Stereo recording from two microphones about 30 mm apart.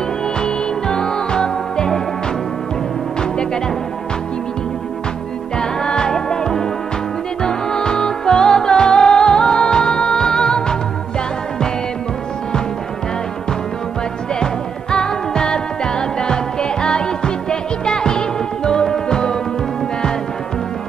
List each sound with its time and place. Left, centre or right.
0.4 s music: left
5.6 s music: left
14.4 s music: left